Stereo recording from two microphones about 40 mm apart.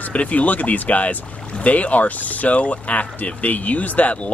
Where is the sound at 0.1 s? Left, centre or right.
Left.